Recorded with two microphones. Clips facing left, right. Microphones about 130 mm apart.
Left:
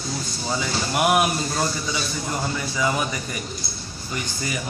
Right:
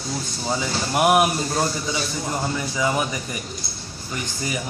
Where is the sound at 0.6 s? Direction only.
25° right (ahead or behind).